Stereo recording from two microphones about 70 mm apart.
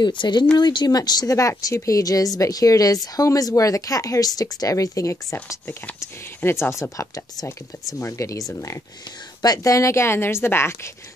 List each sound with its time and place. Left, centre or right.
0.0 s speech: left
1.6 s speech: left
9.6 s a woman's voice: left